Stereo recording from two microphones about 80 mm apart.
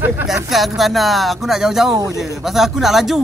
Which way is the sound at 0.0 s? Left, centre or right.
Right.